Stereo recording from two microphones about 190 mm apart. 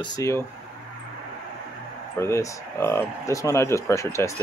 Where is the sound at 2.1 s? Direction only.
15° left (ahead or behind).